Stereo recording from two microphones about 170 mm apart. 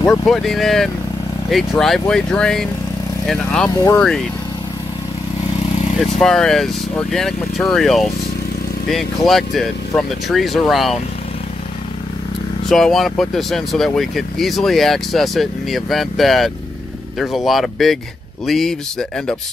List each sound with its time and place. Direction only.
0.0 s speech: 15° left (ahead or behind)
0.3 s speech: centre (ahead or behind)
3.7 s speech: 20° left (ahead or behind)
6.1 s speech: 5° left (ahead or behind)
12.6 s speech: centre (ahead or behind)